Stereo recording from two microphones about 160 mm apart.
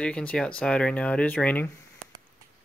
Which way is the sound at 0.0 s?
5° left (ahead or behind).